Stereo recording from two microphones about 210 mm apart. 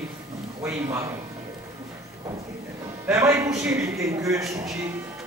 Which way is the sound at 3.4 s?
5° right (ahead or behind).